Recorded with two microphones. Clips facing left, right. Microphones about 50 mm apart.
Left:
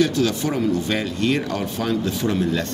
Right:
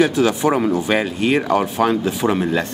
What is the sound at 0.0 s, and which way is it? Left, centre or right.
Speech, centre.